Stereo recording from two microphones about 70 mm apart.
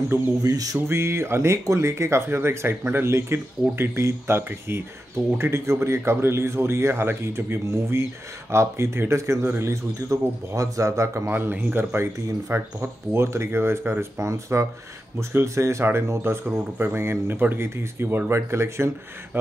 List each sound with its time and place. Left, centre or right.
0.4 s a sound: right
0.7 s a man's voice: right
11.2 s a man's voice: right
16.4 s speech: right